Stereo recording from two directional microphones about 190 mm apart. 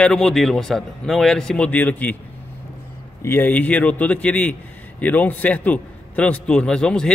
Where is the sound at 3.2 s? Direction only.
10° left (ahead or behind).